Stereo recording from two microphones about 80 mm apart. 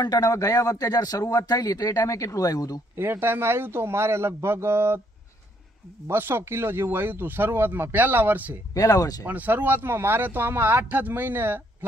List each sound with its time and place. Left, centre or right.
0.0 s speech: left
3.0 s a man's voice: right
6.0 s speech: right
8.7 s speech: left
9.2 s speech: right